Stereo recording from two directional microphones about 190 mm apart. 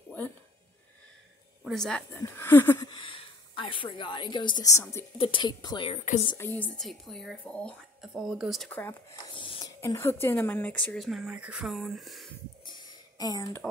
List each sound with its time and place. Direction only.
1.6 s a woman's voice: centre (ahead or behind)
2.9 s a woman's voice: 25° left (ahead or behind)
6.3 s speech: 10° left (ahead or behind)
9.3 s a sound: 25° left (ahead or behind)
9.8 s speech: 15° left (ahead or behind)
12.6 s a sound: 25° left (ahead or behind)